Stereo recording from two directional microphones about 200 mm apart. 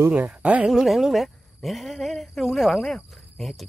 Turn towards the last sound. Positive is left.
turn(degrees=5)  # may be behind; listen again after turning